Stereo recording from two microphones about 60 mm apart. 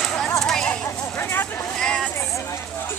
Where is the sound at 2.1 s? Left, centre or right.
Left.